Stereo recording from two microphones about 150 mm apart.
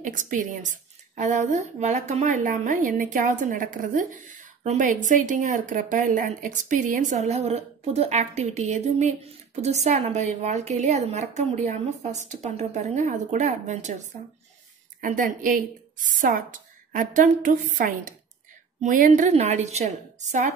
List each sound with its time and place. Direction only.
0.0 s a woman's voice: 60° right (ahead or behind)
15.0 s a woman's voice: 65° right (ahead or behind)